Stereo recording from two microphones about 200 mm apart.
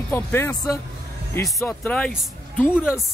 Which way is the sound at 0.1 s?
10° left (ahead or behind).